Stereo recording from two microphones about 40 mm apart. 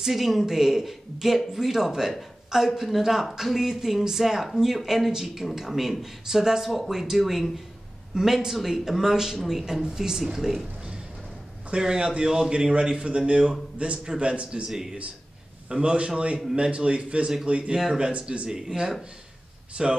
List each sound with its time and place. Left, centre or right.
0.0 s speech: centre
8.1 s speech: centre
11.7 s a man's voice: right
15.8 s a man's voice: right
18.8 s speech: centre